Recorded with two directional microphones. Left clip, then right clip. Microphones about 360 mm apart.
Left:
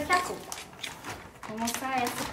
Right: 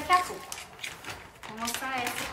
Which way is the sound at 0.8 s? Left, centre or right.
Centre.